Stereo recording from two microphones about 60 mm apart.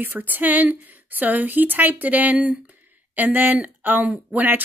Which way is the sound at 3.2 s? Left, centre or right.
Right.